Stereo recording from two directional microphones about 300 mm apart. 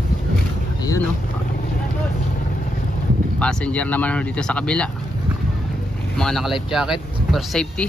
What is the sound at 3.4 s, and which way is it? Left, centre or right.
Speech, centre.